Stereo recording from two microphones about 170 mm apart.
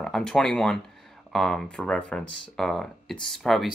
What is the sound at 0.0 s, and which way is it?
Speech, 5° left (ahead or behind).